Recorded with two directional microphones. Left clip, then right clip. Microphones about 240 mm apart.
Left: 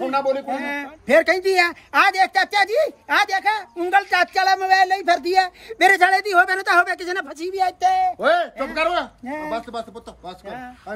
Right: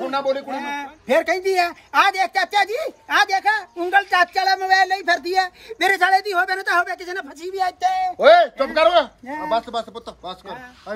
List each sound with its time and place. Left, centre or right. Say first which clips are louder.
0.0 s speech: left 1 dB; centre
0.6 s speech: even; centre
8.2 s speech: right 7 dB; right